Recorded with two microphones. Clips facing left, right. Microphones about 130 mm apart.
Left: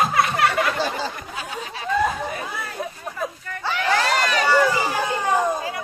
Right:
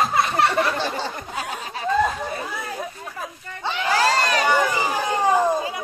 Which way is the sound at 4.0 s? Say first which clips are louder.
Right 1 dB; 35° right (ahead or behind).